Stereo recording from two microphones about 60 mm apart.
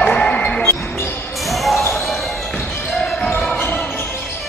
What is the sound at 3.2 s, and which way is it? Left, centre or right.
Basketball bounce, centre.